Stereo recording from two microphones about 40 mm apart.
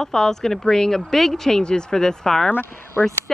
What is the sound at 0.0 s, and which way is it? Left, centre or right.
Speech, centre.